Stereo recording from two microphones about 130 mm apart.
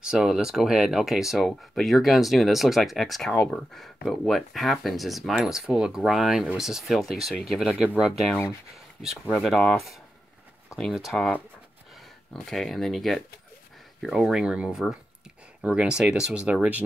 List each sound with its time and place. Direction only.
0.0 s speech: 5° right (ahead or behind)
12.4 s speech: 5° left (ahead or behind)